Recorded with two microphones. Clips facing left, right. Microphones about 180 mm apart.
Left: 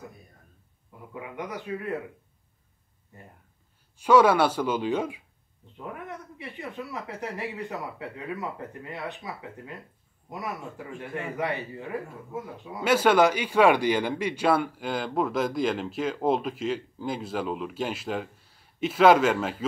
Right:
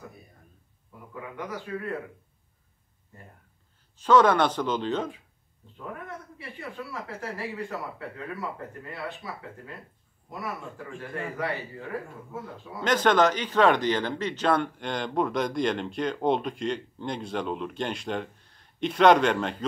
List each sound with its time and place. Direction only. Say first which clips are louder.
1.3 s speech: left 1 dB; 20° left (ahead or behind)
4.0 s speech: left 1 dB; 10° left (ahead or behind)
11.0 s speech: left 1 dB; 20° left (ahead or behind)